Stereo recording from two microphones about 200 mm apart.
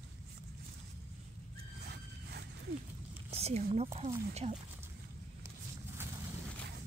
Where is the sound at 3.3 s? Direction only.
30° right (ahead or behind).